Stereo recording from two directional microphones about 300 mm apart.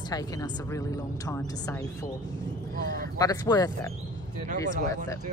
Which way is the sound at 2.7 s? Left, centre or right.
Right.